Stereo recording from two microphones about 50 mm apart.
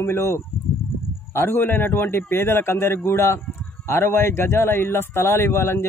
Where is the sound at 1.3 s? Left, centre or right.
Left.